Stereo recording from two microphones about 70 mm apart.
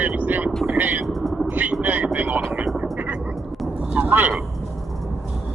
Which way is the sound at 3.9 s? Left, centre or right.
Right.